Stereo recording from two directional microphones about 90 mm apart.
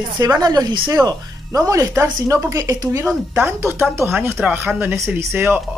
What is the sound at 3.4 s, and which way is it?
Speech, 25° right (ahead or behind).